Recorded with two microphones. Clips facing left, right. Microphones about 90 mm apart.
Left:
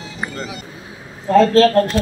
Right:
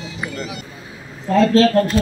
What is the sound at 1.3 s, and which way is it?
Speech, 45° left (ahead or behind).